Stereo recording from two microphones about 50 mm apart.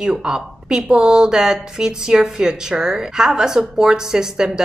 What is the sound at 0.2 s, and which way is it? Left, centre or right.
Speech, centre.